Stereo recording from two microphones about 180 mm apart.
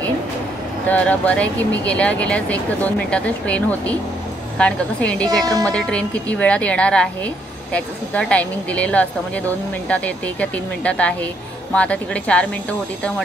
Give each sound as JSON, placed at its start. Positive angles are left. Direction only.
{"t": 0.8, "sound": "a woman's voice", "side_deg": 10}
{"t": 5.4, "sound": "a woman's voice", "side_deg": -20}
{"t": 5.7, "sound": "speech", "side_deg": 5}